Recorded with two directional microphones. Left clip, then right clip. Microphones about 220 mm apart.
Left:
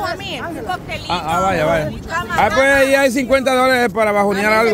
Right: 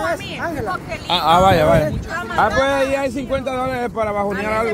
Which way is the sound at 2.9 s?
35° left (ahead or behind).